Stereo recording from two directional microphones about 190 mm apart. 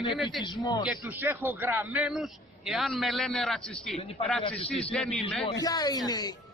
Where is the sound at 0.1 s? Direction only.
Centre (ahead or behind).